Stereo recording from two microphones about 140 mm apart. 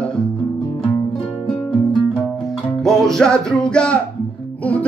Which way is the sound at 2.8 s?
5° left (ahead or behind).